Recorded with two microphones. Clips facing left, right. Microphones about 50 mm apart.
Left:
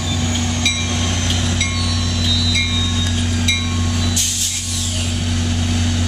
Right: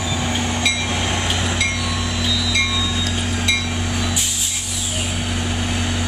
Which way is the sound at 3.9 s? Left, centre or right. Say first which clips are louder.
Left 1 dB; centre.